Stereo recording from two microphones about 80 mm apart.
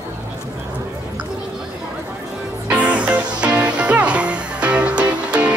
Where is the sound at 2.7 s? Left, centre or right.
Centre.